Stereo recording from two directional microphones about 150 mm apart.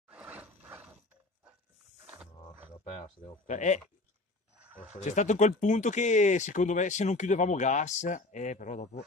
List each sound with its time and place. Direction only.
0.1 s roar: 10° right (ahead or behind)
2.0 s a sound: 5° right (ahead or behind)
3.4 s speech: 55° left (ahead or behind)
4.9 s speech: 50° left (ahead or behind)